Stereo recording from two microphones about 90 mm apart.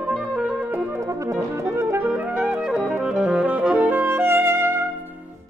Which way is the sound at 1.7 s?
30° right (ahead or behind).